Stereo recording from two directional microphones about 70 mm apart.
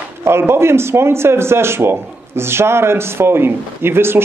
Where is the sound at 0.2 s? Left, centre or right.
Right.